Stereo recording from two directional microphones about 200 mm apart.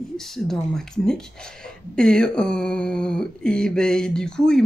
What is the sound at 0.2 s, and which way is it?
A woman's voice, centre (ahead or behind).